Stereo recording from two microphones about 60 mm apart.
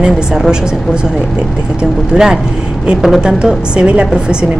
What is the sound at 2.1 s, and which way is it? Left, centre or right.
A woman's voice, centre.